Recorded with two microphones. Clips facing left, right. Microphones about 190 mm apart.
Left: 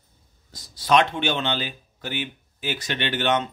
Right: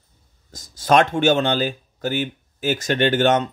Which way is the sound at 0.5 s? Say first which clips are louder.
Right 3 dB; 45° right (ahead or behind).